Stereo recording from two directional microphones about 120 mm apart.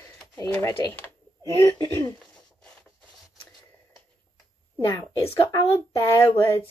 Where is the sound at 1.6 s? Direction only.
30° left (ahead or behind).